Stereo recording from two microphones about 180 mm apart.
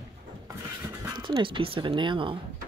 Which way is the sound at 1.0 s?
20° right (ahead or behind).